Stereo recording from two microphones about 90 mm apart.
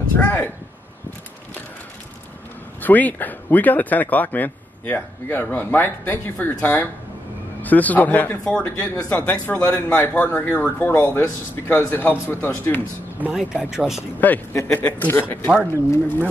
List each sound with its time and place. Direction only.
0.1 s a man's voice: 25° left (ahead or behind)
2.8 s a man's voice: 20° left (ahead or behind)
13.2 s speech: 5° right (ahead or behind)
14.7 s a man's voice: 20° left (ahead or behind)